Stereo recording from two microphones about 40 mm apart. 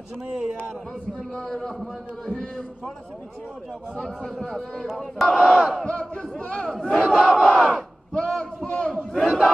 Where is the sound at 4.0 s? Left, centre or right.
Centre.